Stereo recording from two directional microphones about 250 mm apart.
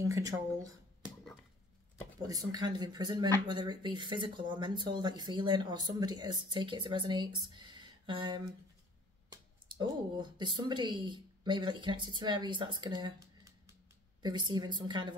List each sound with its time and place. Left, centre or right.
0.0 s speech: centre
2.2 s speech: centre